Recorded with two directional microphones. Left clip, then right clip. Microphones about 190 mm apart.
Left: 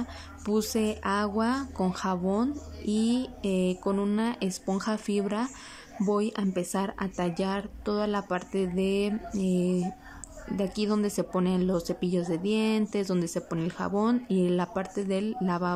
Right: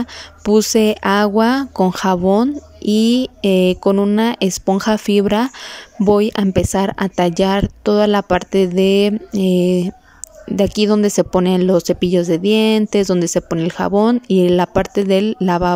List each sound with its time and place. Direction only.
0.0 s speech: 40° right (ahead or behind)